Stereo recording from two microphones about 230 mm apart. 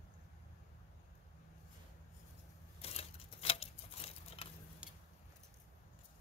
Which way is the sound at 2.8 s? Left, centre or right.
Left.